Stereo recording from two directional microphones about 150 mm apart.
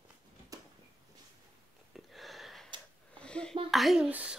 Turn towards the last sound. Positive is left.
turn(degrees=-5)  # may be behind; listen again after turning